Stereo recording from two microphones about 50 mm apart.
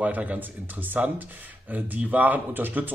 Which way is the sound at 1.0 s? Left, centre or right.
Right.